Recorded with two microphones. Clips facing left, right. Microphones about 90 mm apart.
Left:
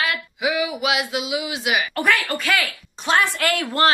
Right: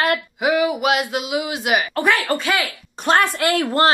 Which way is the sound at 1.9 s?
20° right (ahead or behind).